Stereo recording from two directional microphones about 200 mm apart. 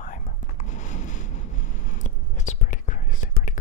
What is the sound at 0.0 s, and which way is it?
Whispering, 40° left (ahead or behind).